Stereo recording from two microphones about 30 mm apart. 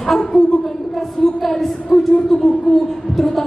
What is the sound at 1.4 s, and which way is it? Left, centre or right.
Speech, centre.